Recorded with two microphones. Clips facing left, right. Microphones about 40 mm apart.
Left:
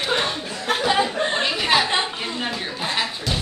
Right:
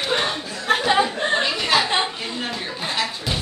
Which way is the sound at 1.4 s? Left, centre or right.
Centre.